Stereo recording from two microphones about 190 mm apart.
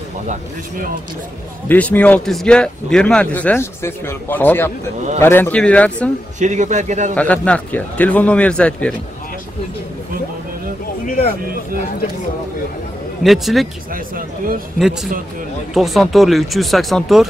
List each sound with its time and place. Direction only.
1.7 s speech: 5° left (ahead or behind)
6.4 s a man's voice: 40° right (ahead or behind)
7.2 s speech: 5° left (ahead or behind)
13.2 s speech: centre (ahead or behind)
13.9 s speech: 45° right (ahead or behind)
14.8 s speech: centre (ahead or behind)